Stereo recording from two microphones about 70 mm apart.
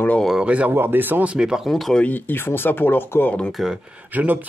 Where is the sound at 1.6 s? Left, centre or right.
Centre.